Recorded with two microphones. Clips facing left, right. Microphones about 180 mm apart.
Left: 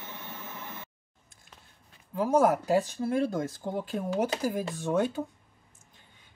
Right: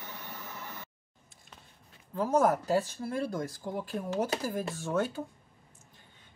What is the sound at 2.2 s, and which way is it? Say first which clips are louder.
Speech: left 2 dB; 10° left (ahead or behind).